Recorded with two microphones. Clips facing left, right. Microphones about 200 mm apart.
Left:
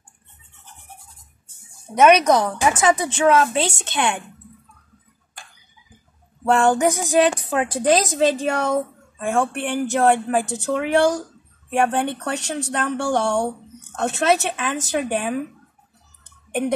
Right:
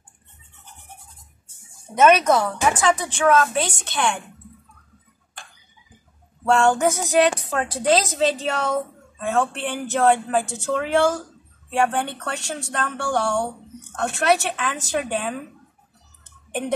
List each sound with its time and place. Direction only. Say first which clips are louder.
2.0 s speech: left 2 dB; 15° left (ahead or behind)
6.4 s speech: left 1 dB; 15° left (ahead or behind)